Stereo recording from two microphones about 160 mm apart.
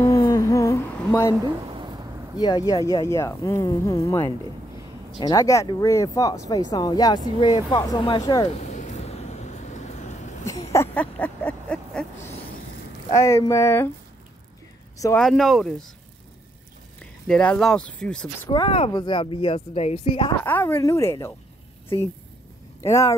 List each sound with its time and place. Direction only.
0.0 s humming: 25° left (ahead or behind)
1.4 s a sound: 30° right (ahead or behind)
2.3 s speech: 25° left (ahead or behind)
8.5 s vehicle: 45° left (ahead or behind)
10.7 s a sound: 15° left (ahead or behind)
13.1 s speech: 20° left (ahead or behind)
15.1 s speech: centre (ahead or behind)
17.0 s speech: 5° left (ahead or behind)
18.5 s speech: 35° left (ahead or behind)
20.4 s speech: 15° left (ahead or behind)